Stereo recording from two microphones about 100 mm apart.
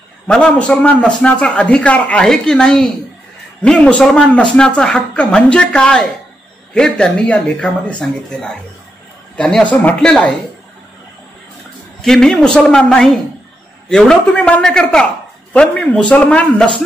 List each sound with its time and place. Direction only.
0.3 s a man's voice: 10° left (ahead or behind)
12.0 s a man's voice: 5° left (ahead or behind)